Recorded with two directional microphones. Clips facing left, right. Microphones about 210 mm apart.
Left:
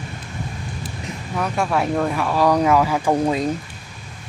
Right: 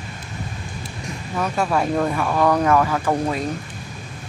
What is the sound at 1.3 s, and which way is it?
Speech, centre (ahead or behind).